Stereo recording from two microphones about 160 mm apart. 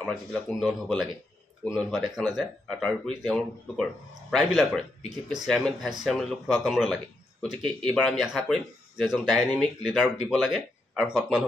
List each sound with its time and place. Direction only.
0.0 s speech: 5° left (ahead or behind)